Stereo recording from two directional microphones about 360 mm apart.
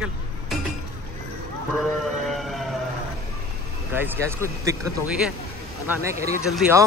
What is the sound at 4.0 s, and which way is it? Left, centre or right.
Speech, centre.